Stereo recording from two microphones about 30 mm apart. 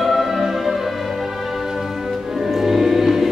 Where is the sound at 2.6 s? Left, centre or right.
Centre.